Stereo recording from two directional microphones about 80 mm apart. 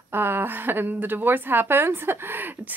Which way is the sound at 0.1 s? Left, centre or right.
Right.